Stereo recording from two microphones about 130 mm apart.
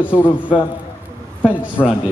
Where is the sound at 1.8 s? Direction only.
30° left (ahead or behind).